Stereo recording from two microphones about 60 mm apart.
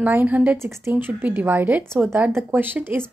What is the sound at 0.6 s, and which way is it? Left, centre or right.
Speech, right.